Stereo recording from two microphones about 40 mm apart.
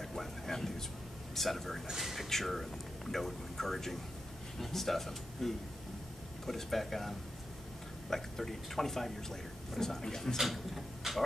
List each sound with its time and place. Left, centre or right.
0.0 s a sound: centre
1.3 s speech: centre
1.9 s speech: centre
2.2 s a man's voice: centre
10.3 s speech: centre